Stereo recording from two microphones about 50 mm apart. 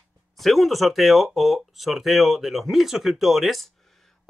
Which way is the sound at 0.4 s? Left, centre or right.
Centre.